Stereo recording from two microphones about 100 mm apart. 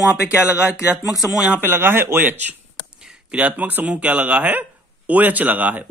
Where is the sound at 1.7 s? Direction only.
25° right (ahead or behind).